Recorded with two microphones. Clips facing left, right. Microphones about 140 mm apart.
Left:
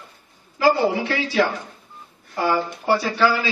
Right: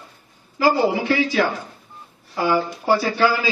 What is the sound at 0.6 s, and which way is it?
Speech, 15° right (ahead or behind).